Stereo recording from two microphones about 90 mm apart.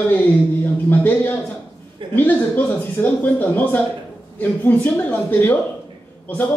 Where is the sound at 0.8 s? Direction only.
20° left (ahead or behind).